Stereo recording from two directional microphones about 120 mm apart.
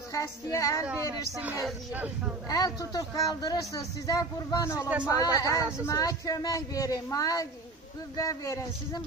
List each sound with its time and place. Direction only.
0.1 s speech: 25° left (ahead or behind)
2.5 s speech: 30° left (ahead or behind)
4.8 s speech: 10° right (ahead or behind)
5.1 s speech: 30° left (ahead or behind)